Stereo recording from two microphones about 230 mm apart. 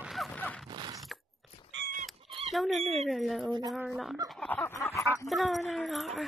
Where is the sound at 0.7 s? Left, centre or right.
Centre.